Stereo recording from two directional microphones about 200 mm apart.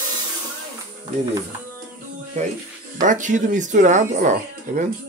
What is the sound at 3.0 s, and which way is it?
Speech, 40° right (ahead or behind).